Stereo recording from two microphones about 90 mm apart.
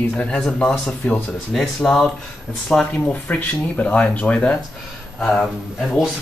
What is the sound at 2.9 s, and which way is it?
Speech, 15° left (ahead or behind).